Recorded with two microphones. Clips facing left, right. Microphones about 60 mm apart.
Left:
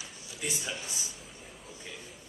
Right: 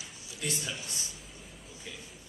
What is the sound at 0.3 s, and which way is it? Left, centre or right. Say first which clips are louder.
Speech: even; centre.